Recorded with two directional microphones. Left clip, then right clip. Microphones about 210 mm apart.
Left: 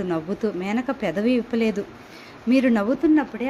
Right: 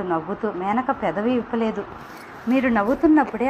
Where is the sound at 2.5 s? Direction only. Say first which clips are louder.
Even; 50° left (ahead or behind).